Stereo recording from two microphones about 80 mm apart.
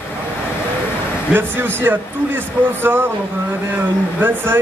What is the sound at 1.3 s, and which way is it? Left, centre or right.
Speech, right.